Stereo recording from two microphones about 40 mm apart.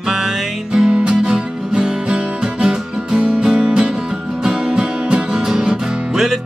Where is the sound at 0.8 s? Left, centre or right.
Right.